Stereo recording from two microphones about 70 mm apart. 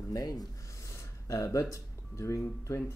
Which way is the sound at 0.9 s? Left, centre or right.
Left.